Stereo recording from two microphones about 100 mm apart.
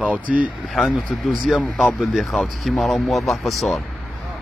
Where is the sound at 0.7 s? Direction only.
Centre (ahead or behind).